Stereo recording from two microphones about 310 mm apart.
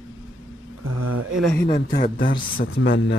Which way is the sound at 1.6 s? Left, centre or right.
Left.